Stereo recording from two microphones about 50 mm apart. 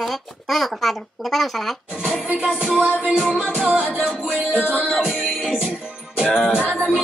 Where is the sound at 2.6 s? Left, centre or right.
Right.